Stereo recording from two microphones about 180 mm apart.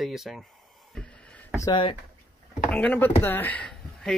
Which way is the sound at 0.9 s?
5° left (ahead or behind).